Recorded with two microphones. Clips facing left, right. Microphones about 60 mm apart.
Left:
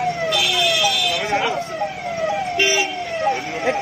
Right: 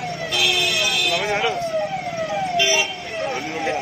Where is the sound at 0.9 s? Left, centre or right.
Right.